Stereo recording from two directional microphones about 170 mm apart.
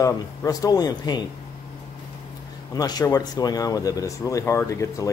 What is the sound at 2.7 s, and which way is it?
Speech, 20° left (ahead or behind).